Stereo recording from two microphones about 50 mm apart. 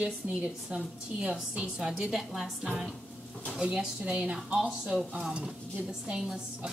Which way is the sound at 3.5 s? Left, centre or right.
Centre.